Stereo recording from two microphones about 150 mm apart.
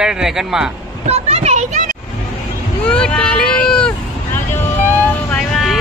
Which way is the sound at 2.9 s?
10° left (ahead or behind).